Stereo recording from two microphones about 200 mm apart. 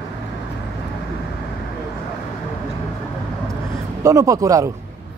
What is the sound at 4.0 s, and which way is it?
Speech, 15° right (ahead or behind).